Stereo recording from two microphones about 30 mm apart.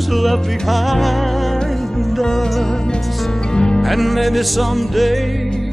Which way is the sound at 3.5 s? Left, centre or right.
Left.